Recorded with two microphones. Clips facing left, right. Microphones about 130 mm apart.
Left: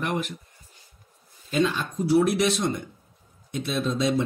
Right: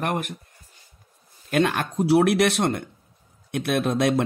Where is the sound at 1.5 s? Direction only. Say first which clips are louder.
Right 2 dB; 65° right (ahead or behind).